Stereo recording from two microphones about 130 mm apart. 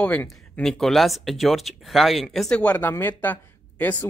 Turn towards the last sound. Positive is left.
turn(degrees=10)  # may be behind; listen again after turning